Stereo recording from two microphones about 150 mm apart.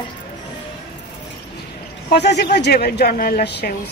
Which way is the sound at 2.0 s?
90° left.